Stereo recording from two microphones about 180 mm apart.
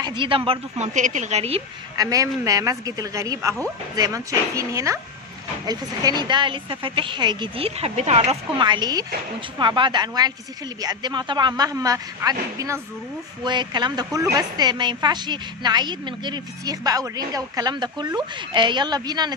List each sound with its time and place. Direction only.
0.0 s a woman's voice: 25° right (ahead or behind)
2.0 s a woman's voice: 20° right (ahead or behind)